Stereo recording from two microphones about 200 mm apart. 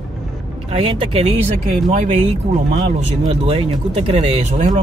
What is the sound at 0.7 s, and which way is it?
Speech, 25° right (ahead or behind).